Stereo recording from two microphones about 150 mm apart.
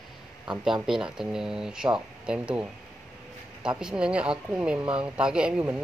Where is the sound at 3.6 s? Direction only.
5° right (ahead or behind).